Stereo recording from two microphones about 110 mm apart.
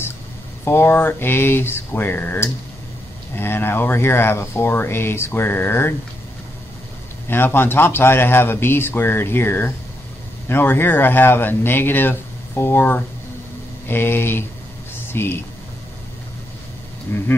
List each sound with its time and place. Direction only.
0.7 s speech: 20° left (ahead or behind)
7.2 s speech: 20° left (ahead or behind)
17.1 s speech: 20° left (ahead or behind)